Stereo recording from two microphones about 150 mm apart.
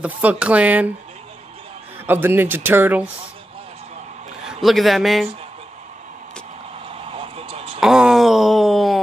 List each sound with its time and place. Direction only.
0.0 s speech: 10° right (ahead or behind)
2.0 s speech: 15° right (ahead or behind)
4.5 s a man's voice: centre (ahead or behind)
6.9 s a sound: 40° right (ahead or behind)
7.8 s wail: 5° right (ahead or behind)